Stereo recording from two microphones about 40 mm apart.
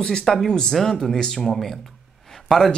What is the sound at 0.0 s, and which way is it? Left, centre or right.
Speech, centre.